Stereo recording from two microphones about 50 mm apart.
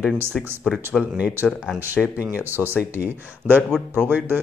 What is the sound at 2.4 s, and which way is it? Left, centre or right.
Speech, right.